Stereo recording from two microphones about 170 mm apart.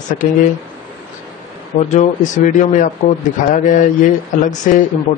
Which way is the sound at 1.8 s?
45° left (ahead or behind).